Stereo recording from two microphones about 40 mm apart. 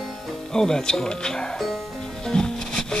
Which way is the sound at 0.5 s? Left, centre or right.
Centre.